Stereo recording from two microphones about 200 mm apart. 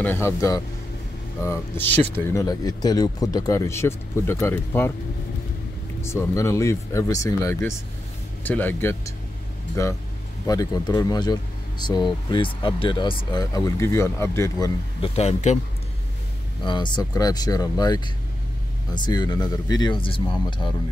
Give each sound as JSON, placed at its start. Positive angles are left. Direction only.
{"t": 0.0, "sound": "speech", "side_deg": 10}
{"t": 6.0, "sound": "speech", "side_deg": 15}
{"t": 10.4, "sound": "speech", "side_deg": 20}
{"t": 15.0, "sound": "speech", "side_deg": 30}
{"t": 16.6, "sound": "speech", "side_deg": 25}